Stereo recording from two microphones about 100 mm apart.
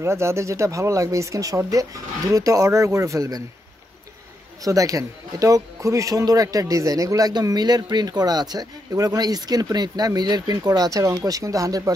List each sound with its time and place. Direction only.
0.0 s speech: 30° right (ahead or behind)
4.6 s speech: 35° right (ahead or behind)